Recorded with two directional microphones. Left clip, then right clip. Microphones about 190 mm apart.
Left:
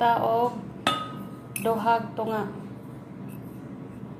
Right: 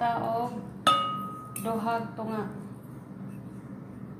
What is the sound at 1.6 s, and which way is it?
Speech, 30° left (ahead or behind).